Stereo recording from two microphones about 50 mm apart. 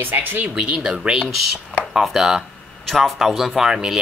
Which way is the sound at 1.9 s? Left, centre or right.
Centre.